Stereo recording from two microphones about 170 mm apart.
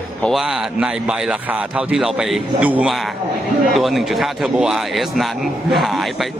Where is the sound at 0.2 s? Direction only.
Centre (ahead or behind).